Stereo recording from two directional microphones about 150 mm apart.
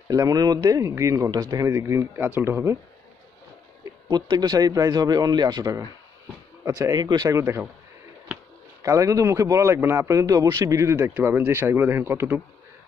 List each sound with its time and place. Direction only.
0.1 s speech: 25° right (ahead or behind)
4.1 s speech: 25° right (ahead or behind)
8.8 s speech: 20° right (ahead or behind)